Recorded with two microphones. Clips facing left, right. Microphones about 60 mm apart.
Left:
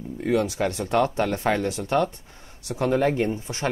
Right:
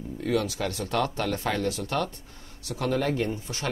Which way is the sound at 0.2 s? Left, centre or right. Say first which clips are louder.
Left 4 dB; left.